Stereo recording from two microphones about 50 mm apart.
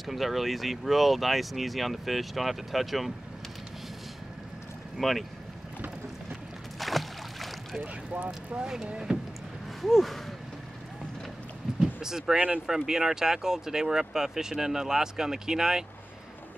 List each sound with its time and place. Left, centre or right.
0.0 s speech: centre
4.9 s speech: centre
6.8 s boat: centre
7.8 s speech: right
8.5 s speech: centre
9.1 s vehicle: centre
9.8 s speech: centre
11.8 s speech: centre
12.4 s speech: right
12.6 s speech: centre